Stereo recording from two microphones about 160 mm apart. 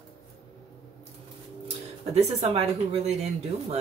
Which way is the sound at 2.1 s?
40° right (ahead or behind).